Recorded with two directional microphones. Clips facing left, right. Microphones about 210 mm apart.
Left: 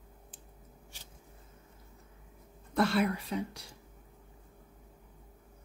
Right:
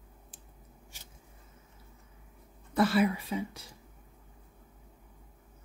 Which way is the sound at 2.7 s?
5° right (ahead or behind).